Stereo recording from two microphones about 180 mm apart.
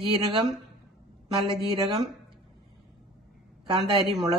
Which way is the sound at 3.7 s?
25° right (ahead or behind).